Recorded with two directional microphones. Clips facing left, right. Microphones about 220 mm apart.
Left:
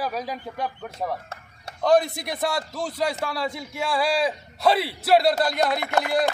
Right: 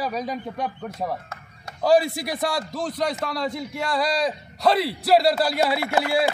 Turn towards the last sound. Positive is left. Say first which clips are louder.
# right 1 dB
turn(degrees=-5)  # may be behind; listen again after turning